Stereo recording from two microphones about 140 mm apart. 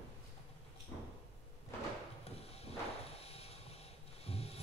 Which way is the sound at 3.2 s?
45° left (ahead or behind).